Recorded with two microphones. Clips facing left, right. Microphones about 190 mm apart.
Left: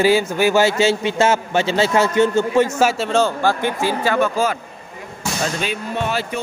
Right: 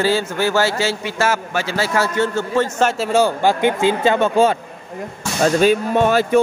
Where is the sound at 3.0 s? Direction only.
10° right (ahead or behind).